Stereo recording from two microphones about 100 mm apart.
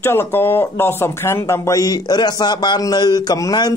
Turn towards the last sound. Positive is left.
turn(degrees=40)  # may be behind; listen again after turning